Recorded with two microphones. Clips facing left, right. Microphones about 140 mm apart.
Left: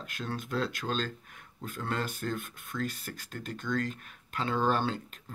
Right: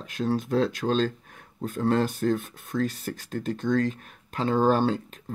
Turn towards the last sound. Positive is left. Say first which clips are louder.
# right 8 dB
turn(degrees=-40)  # may be behind; listen again after turning